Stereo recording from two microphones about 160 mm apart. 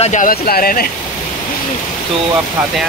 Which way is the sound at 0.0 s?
50° left (ahead or behind).